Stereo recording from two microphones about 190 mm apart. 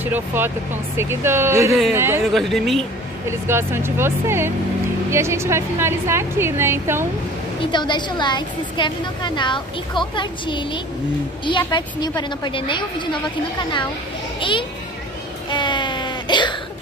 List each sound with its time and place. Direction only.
0.0 s a woman's voice: 10° right (ahead or behind)
2.3 s speech: centre (ahead or behind)
3.3 s a woman's voice: 15° right (ahead or behind)
7.7 s a woman's voice: 25° left (ahead or behind)
15.5 s a sound: 25° left (ahead or behind)